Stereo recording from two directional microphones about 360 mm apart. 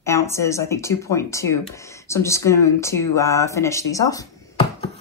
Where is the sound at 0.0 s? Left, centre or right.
Centre.